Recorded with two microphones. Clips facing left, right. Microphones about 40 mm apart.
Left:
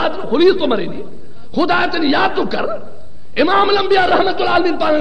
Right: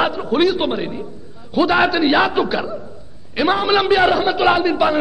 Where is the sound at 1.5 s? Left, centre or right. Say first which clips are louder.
Even; centre.